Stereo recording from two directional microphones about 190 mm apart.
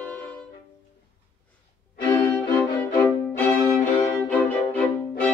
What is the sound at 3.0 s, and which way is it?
Violin, 10° left (ahead or behind).